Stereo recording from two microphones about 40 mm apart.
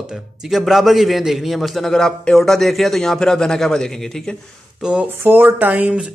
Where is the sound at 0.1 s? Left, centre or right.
Centre.